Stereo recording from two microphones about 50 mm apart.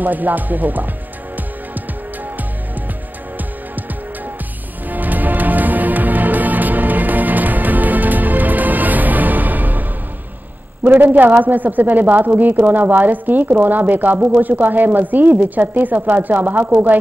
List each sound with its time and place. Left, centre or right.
0.0 s a man's voice: right
4.8 s music: right
10.8 s a man's voice: right